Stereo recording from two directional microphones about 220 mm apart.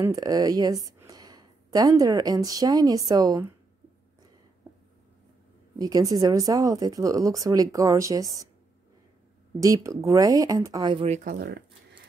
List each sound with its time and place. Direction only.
0.0 s speech: 15° right (ahead or behind)
5.8 s speech: 15° right (ahead or behind)
9.6 s speech: 15° right (ahead or behind)
11.2 s speech: 50° right (ahead or behind)